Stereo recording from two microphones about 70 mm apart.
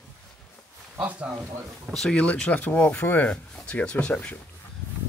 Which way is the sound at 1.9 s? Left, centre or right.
Centre.